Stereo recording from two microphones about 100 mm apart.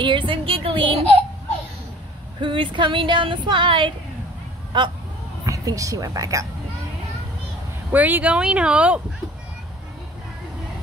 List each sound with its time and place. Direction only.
0.0 s female singing: 55° right (ahead or behind)
2.4 s female singing: 55° right (ahead or behind)
4.7 s speech: 50° right (ahead or behind)
5.4 s a woman's voice: 35° right (ahead or behind)
7.9 s speech: 15° right (ahead or behind)